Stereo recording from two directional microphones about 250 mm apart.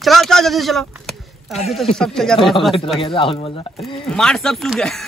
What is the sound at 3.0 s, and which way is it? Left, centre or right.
Speech, centre.